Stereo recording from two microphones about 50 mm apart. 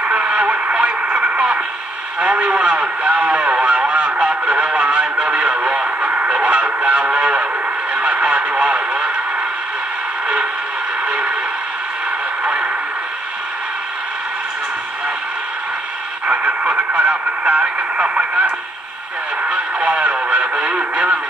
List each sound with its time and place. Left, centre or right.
0.0 s radio: right
6.0 s a sound: right
7.9 s radio: right
10.2 s a sound: right
16.3 s radio: right
19.5 s radio: right